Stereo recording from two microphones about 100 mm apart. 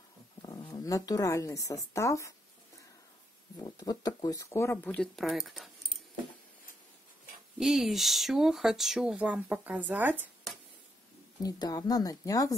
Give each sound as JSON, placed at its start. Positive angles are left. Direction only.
{"t": 0.7, "sound": "speech", "side_deg": 35}
{"t": 3.5, "sound": "speech", "side_deg": 40}
{"t": 4.8, "sound": "speech", "side_deg": 10}
{"t": 5.1, "sound": "speech", "side_deg": -5}
{"t": 7.5, "sound": "speech", "side_deg": -5}
{"t": 11.4, "sound": "speech", "side_deg": 40}